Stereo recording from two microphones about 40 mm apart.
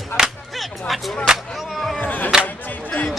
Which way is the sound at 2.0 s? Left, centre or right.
Left.